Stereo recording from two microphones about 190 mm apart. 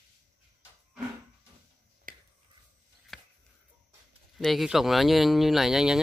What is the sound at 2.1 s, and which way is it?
Finger snapping, 45° right (ahead or behind).